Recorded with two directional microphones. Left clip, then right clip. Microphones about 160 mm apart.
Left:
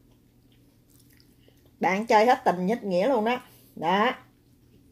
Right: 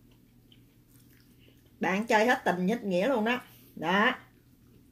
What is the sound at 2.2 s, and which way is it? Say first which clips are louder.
Speech: left 6 dB; 50° left (ahead or behind).